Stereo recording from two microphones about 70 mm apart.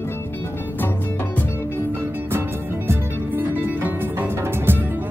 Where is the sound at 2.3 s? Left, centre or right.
Right.